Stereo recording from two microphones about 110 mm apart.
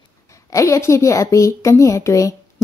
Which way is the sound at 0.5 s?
30° left (ahead or behind).